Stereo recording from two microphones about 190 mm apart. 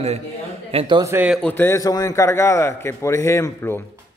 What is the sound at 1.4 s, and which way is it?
A man's voice, 10° left (ahead or behind).